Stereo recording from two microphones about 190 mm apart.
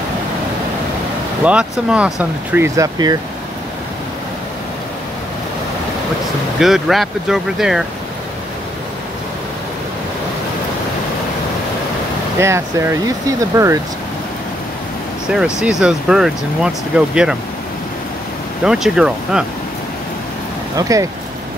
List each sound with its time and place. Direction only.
1.4 s speech: 5° right (ahead or behind)
6.6 s speech: centre (ahead or behind)
12.4 s speech: 15° right (ahead or behind)
15.2 s speech: 5° right (ahead or behind)
18.6 s speech: 5° right (ahead or behind)
20.7 s speech: 15° right (ahead or behind)